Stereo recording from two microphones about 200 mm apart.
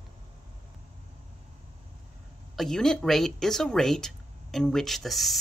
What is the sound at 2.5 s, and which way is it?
Speech, centre (ahead or behind).